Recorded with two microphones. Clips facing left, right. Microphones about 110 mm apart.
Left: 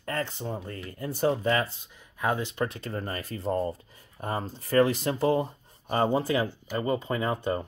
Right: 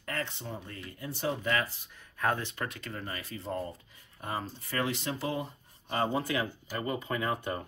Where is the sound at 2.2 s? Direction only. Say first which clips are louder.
Left 3 dB; 15° left (ahead or behind).